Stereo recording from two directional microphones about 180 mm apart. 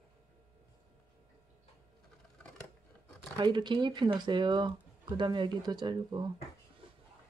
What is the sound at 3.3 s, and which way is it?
Speech, 25° right (ahead or behind).